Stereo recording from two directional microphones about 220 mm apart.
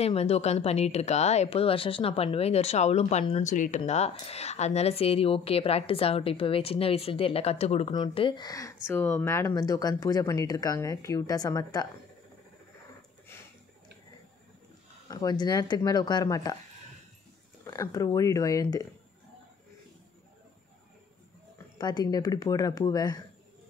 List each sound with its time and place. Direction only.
0.0 s speech: 30° left (ahead or behind)
15.0 s speech: 20° left (ahead or behind)
17.6 s speech: 15° left (ahead or behind)
21.7 s speech: 20° left (ahead or behind)